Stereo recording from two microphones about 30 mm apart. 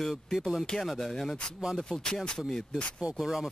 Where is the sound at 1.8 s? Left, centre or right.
Left.